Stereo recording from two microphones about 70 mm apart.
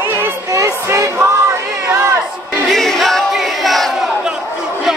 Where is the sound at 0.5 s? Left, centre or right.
Right.